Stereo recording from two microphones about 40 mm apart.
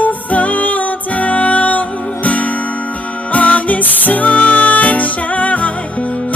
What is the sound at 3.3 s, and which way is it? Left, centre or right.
Music, left.